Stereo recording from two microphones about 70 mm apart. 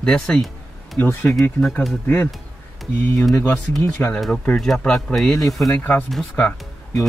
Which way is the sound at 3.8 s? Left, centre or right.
Left.